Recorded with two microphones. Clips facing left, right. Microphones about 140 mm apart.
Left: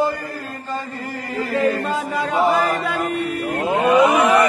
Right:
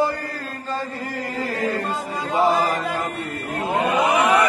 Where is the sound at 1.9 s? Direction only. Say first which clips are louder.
Left 5 dB; 75° left (ahead or behind).